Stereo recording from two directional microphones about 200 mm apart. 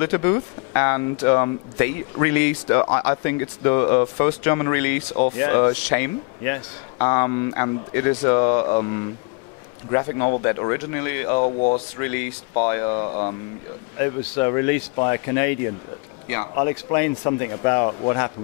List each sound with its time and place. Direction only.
0.0 s speech: 15° left (ahead or behind)
9.8 s speech: 20° left (ahead or behind)
11.3 s speech: 30° left (ahead or behind)